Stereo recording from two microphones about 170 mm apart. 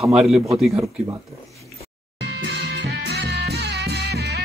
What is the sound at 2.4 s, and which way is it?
Music, 80° right.